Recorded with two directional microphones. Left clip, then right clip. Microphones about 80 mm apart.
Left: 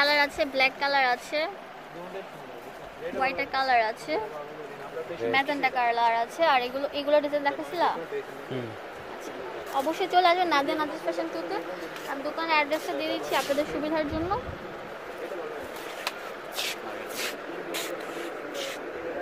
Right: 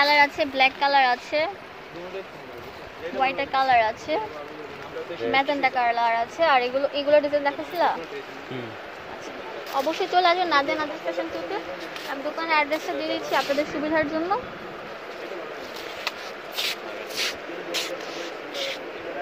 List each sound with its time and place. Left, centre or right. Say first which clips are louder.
0.0 s a woman's voice: right 5 dB; right
3.2 s a woman's voice: right 4 dB; right
5.3 s a woman's voice: right 4 dB; right
9.8 s a woman's voice: right 2 dB; right
10.7 s a woman's voice: right 2 dB; right
12.4 s a woman's voice: right 2 dB; right
13.8 s speech: right 4 dB; right
17.1 s a sound: right 7 dB; centre